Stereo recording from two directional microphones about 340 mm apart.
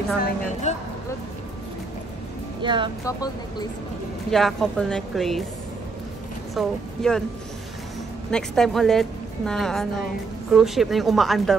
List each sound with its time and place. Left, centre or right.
0.2 s a woman's voice: centre
2.6 s speech: centre
3.1 s speech: centre
6.5 s speech: centre
8.3 s speech: centre